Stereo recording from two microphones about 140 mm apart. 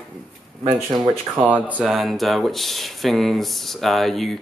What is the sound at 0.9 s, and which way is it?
Speech, 35° right (ahead or behind).